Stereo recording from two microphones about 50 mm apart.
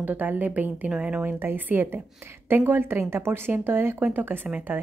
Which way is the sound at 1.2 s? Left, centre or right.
Right.